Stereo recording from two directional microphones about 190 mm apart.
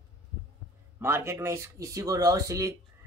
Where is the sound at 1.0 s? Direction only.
15° right (ahead or behind).